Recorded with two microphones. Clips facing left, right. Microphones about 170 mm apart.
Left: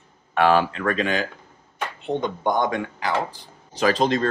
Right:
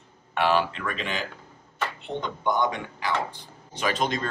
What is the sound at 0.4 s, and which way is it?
Speech, 45° left (ahead or behind).